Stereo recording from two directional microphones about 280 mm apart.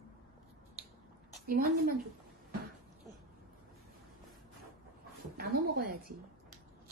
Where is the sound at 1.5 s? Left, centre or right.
Right.